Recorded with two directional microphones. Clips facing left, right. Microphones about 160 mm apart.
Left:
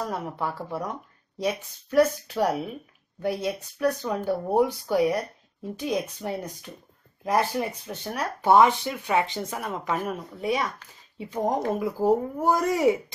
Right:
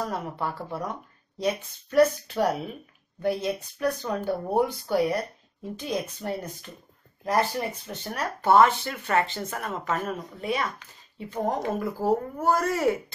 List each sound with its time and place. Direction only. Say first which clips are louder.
0.4 s speech: left 1 dB; 5° left (ahead or behind)